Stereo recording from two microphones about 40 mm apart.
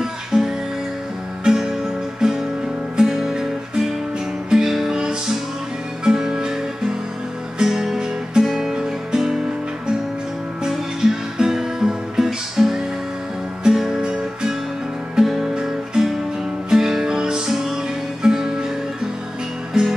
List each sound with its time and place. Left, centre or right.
0.0 s music: centre
7.5 s music: centre
10.6 s music: centre
15.5 s guitar: centre
16.7 s music: centre
19.7 s music: centre